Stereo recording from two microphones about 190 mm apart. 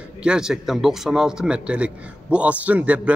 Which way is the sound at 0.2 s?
5° right (ahead or behind).